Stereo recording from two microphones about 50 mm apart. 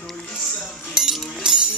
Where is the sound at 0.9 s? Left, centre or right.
Centre.